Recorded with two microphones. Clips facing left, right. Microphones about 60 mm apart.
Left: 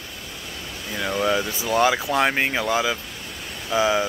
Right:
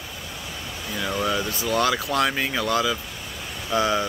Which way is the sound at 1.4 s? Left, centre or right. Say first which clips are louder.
Left 2 dB; centre.